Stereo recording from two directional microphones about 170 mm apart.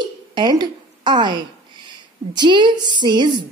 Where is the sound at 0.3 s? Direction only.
25° right (ahead or behind).